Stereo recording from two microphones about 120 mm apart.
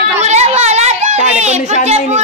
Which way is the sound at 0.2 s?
70° right (ahead or behind).